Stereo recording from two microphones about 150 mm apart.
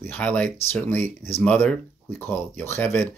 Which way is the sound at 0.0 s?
10° left (ahead or behind).